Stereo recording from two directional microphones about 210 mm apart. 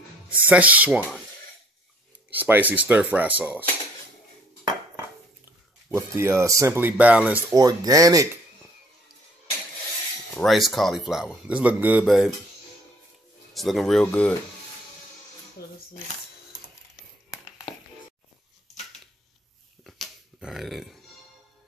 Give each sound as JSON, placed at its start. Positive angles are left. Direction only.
{"t": 0.3, "sound": "speech", "side_deg": -5}
{"t": 2.3, "sound": "speech", "side_deg": -10}
{"t": 5.9, "sound": "speech", "side_deg": -10}
{"t": 7.5, "sound": "speech", "side_deg": -15}
{"t": 10.3, "sound": "speech", "side_deg": 0}
{"t": 13.5, "sound": "speech", "side_deg": 0}
{"t": 15.6, "sound": "speech", "side_deg": 45}
{"t": 19.8, "sound": "a sound", "side_deg": 0}